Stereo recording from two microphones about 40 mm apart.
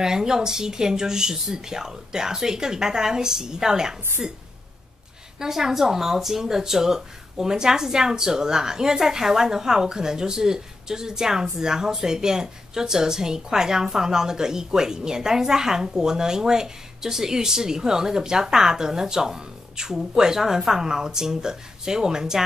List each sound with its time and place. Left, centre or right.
0.0 s speech: centre
5.4 s speech: centre